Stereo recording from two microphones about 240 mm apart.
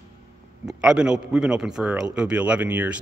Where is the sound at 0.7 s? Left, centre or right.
Centre.